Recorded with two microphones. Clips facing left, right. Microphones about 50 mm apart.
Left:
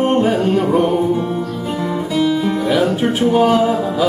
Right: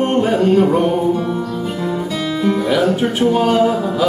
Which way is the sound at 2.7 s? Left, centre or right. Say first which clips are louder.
Left 2 dB; centre.